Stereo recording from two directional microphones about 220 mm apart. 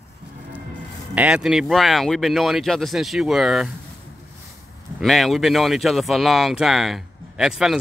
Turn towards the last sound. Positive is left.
turn(degrees=0)  # may be behind; listen again after turning